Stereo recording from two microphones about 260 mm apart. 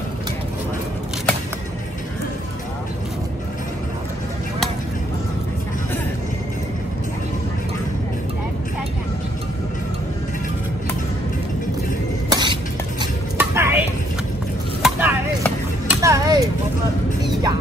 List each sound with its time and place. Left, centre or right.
12.3 s cough: centre
13.0 s a sound: centre
17.2 s music: centre